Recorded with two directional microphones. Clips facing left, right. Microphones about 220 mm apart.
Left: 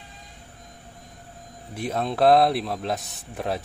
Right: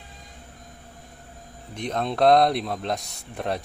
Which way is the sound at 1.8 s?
5° left (ahead or behind).